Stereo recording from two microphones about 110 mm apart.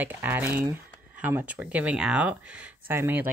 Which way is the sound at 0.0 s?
15° right (ahead or behind).